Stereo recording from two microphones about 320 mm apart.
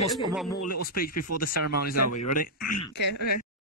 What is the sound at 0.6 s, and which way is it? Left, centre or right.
Speech, left.